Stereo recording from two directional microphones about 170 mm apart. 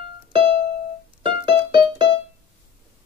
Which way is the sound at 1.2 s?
30° right (ahead or behind).